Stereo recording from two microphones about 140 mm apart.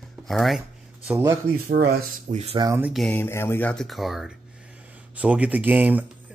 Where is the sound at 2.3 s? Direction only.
50° right (ahead or behind).